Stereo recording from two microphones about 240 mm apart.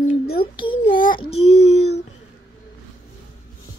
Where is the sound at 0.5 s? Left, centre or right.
Centre.